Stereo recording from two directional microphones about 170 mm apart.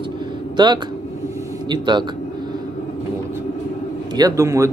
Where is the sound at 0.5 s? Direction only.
25° right (ahead or behind).